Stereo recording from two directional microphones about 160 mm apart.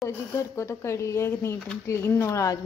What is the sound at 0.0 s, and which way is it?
A woman's voice, 20° left (ahead or behind).